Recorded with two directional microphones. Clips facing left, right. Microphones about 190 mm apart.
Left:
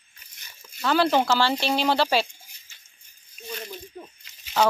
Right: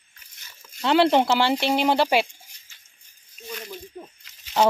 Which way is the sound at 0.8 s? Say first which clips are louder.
Right 3 dB; 25° right (ahead or behind).